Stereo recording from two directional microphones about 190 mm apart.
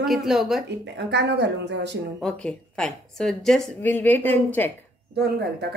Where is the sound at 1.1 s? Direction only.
65° right (ahead or behind).